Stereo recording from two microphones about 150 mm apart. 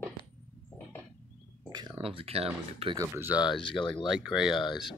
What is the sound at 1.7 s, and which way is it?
Speech, 30° right (ahead or behind).